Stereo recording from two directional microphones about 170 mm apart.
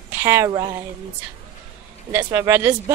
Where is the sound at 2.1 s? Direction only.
15° right (ahead or behind).